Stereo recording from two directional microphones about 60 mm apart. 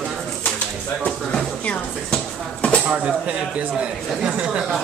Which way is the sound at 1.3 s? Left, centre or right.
Centre.